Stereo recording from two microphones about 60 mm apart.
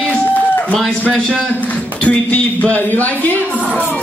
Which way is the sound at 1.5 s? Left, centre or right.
Left.